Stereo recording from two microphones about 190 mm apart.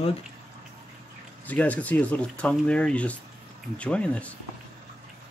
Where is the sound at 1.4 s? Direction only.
10° left (ahead or behind).